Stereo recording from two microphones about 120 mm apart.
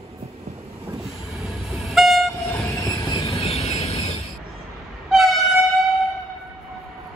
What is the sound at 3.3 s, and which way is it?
Train, 60° left (ahead or behind).